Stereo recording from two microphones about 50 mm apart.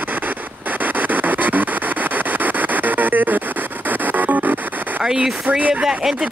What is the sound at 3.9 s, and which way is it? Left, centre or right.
Music, right.